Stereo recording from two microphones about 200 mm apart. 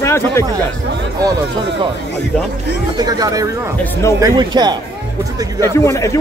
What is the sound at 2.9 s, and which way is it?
Speech, 20° right (ahead or behind).